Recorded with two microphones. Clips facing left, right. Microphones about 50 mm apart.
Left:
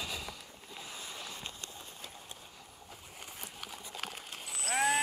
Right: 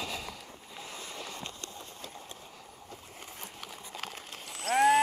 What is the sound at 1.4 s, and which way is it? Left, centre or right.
Clip-clop, centre.